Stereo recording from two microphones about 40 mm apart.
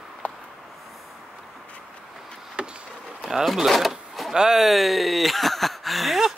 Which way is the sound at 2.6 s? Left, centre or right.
Right.